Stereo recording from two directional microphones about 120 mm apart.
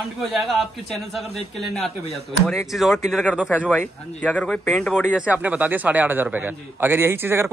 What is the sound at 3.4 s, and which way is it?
Speech, 15° left (ahead or behind).